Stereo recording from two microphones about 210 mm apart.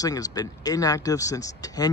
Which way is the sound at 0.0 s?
15° left (ahead or behind).